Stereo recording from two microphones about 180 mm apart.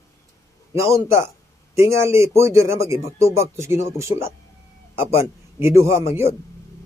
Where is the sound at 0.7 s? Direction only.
15° right (ahead or behind).